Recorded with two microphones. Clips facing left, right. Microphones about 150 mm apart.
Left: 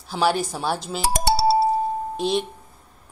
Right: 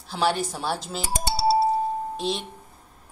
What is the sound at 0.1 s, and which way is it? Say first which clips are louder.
Speech: left 3 dB; centre (ahead or behind).